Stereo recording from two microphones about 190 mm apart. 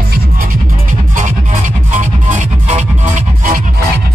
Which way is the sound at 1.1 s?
40° right (ahead or behind).